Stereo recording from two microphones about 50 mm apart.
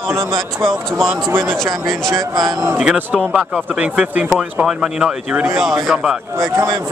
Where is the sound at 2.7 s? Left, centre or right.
Centre.